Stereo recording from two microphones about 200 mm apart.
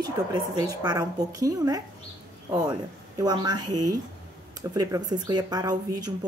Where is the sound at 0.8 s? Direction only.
20° right (ahead or behind).